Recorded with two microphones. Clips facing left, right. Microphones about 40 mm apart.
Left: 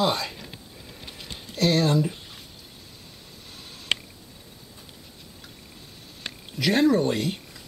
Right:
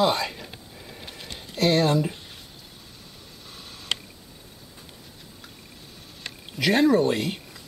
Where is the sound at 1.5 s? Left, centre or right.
Centre.